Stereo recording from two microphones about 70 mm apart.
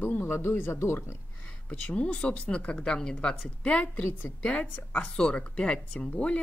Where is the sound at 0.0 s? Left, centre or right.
Left.